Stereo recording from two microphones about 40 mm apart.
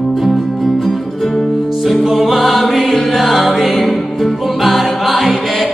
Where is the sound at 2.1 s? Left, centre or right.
Centre.